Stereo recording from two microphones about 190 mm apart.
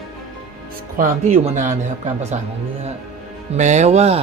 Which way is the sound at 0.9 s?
45° right (ahead or behind).